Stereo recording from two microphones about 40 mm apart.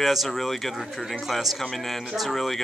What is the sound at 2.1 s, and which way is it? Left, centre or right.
Speech, centre.